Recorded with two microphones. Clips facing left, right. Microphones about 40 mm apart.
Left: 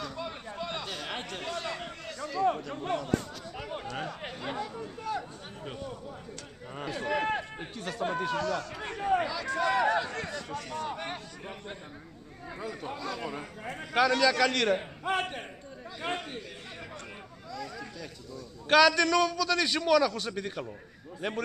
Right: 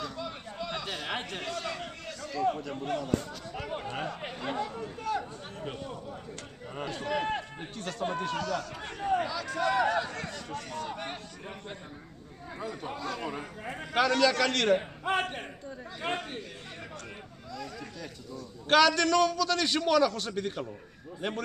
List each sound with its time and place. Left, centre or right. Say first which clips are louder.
0.2 s a sound: left 1 dB; centre
0.8 s a sound: right 2 dB; centre
1.5 s a sound: left 1 dB; centre
3.9 s chatter: right 1 dB; centre
6.7 s run: even; centre
7.0 s speech: left 2 dB; centre
8.4 s speech: left 1 dB; left
8.8 s speech: left 2 dB; centre
9.6 s a man's voice: even; centre
12.5 s a man's voice: right 1 dB; centre
17.5 s a man's voice: left 1 dB; centre